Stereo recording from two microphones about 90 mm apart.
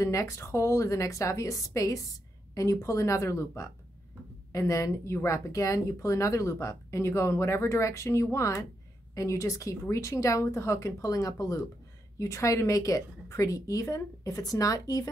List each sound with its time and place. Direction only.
0.0 s speech: 35° left (ahead or behind)